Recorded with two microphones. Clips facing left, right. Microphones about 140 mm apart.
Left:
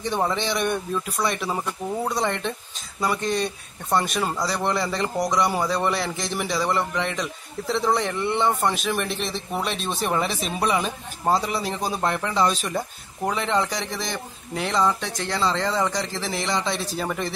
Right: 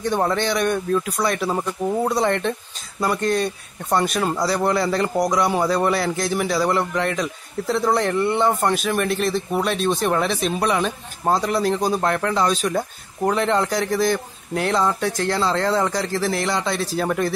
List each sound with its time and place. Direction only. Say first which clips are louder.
0.0 s a man's voice: right 4 dB; centre (ahead or behind)